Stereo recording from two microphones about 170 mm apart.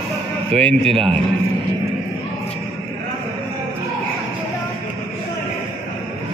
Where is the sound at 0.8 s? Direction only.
35° right (ahead or behind).